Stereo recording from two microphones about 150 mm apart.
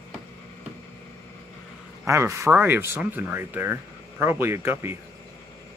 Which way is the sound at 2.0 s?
20° right (ahead or behind).